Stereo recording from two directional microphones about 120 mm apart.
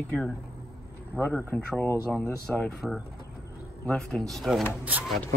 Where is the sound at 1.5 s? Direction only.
10° left (ahead or behind).